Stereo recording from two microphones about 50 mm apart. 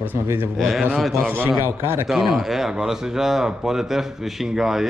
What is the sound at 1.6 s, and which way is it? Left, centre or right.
Speech, right.